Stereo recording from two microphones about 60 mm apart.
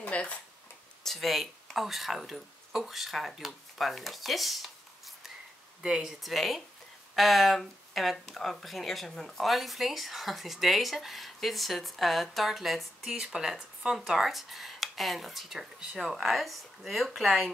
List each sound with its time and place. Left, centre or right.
0.0 s a sound: left
1.0 s speech: centre
5.8 s speech: centre
6.2 s speech: centre